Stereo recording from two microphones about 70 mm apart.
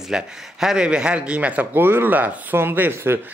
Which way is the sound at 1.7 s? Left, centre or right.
Right.